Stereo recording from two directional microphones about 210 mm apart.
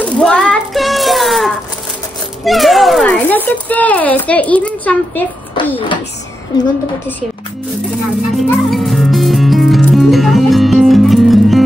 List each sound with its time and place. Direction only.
0.0 s child singing: 5° left (ahead or behind)
2.4 s speech: centre (ahead or behind)
5.6 s a sound: 20° left (ahead or behind)
8.4 s music: centre (ahead or behind)